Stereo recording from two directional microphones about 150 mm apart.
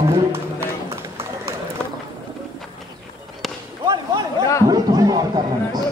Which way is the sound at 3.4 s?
Centre (ahead or behind).